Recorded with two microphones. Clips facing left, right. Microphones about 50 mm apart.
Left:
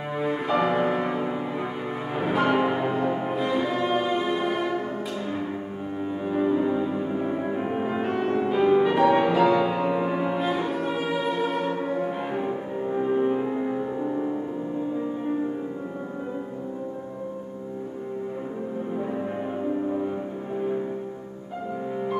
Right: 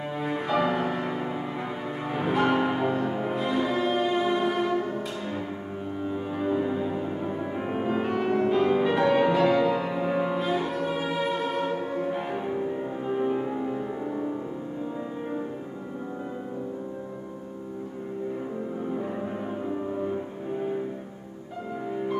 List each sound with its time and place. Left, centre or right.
0.2 s music: centre
6.2 s music: centre
12.9 s music: centre